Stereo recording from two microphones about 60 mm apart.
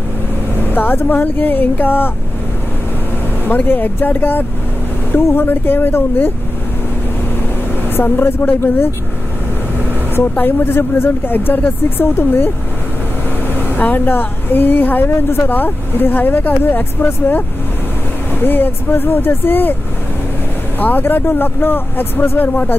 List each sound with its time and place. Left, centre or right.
0.7 s a woman's voice: left
3.4 s a woman's voice: left
7.9 s a woman's voice: left
10.3 s a woman's voice: left
13.6 s a woman's voice: left
20.8 s a woman's voice: left